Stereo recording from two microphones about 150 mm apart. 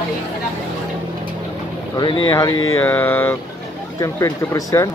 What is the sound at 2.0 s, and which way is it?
Speech, 30° left (ahead or behind).